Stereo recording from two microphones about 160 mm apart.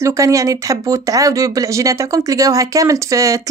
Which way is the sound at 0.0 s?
20° right (ahead or behind).